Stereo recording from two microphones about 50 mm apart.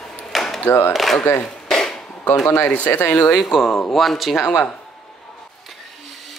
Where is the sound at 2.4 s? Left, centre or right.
Left.